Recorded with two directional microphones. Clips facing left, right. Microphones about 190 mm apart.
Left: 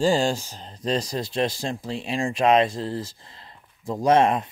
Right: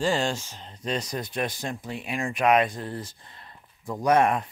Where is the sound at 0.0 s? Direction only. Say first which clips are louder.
Left 4 dB; 35° left (ahead or behind).